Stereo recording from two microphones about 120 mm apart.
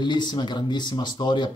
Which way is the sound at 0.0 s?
40° left (ahead or behind).